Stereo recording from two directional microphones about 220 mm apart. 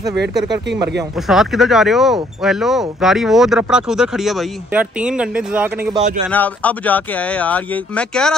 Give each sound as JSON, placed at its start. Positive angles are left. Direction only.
{"t": 1.1, "sound": "speech", "side_deg": 0}
{"t": 6.3, "sound": "speech", "side_deg": 5}